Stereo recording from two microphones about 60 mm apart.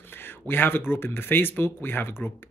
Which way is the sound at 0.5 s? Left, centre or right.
Left.